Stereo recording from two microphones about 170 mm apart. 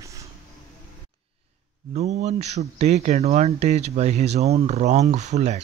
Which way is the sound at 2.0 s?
40° right (ahead or behind).